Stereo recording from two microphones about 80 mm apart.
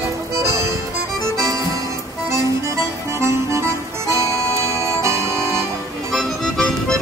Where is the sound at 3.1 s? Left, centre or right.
Right.